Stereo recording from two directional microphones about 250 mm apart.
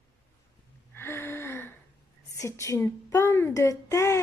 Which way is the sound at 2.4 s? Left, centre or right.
Centre.